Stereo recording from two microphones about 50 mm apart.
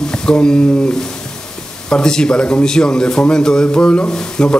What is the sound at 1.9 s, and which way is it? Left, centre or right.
Speech, centre.